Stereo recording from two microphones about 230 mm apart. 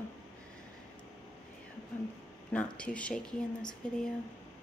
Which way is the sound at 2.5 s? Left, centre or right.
Centre.